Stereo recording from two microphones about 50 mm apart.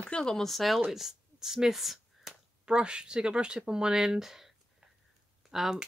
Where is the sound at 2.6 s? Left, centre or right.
Centre.